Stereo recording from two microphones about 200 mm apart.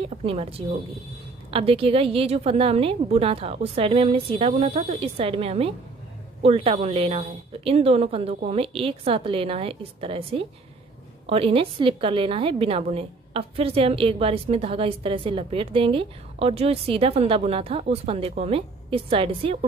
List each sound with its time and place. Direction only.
0.0 s a woman's voice: 30° right (ahead or behind)